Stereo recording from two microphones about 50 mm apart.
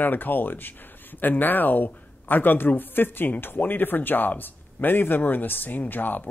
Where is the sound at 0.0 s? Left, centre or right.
Left.